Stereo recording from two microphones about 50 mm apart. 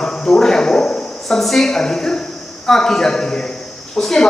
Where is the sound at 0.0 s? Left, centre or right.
Centre.